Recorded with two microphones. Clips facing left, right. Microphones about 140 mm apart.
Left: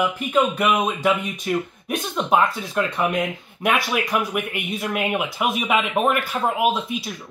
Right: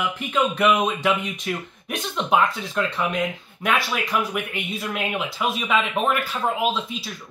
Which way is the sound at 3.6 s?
15° left (ahead or behind).